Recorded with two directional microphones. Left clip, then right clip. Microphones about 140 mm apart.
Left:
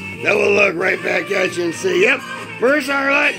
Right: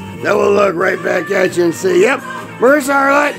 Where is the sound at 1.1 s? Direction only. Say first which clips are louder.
Right 4 dB; 35° right (ahead or behind).